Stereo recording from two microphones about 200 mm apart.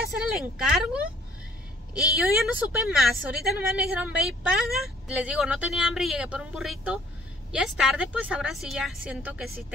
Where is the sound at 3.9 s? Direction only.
5° right (ahead or behind).